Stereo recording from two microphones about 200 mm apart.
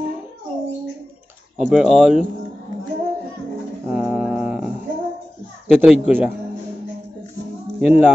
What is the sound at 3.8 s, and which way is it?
Mantra, 5° right (ahead or behind).